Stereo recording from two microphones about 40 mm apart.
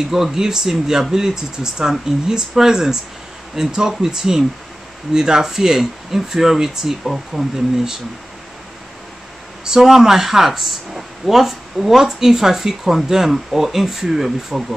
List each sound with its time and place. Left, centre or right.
0.1 s speech: centre
9.7 s speech: centre